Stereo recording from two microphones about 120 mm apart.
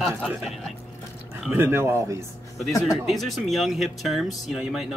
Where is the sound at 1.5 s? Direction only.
20° right (ahead or behind).